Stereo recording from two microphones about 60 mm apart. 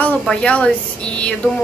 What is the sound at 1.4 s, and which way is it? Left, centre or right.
Speech, left.